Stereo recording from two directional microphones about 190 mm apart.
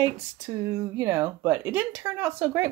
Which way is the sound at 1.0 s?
15° right (ahead or behind).